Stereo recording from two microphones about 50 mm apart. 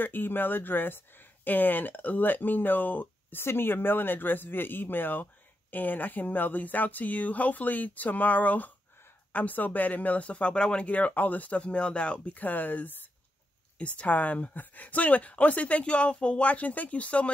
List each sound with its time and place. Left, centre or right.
0.0 s speech: left
3.3 s speech: left; by 10.9 s centre
10.9 s speech: left
12.4 s speech: left
13.7 s speech: left